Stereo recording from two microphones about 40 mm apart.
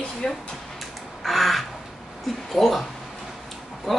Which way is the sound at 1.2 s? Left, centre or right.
Centre.